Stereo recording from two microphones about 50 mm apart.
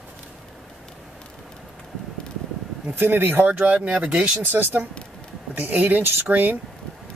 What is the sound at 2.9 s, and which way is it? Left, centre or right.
Speech, right.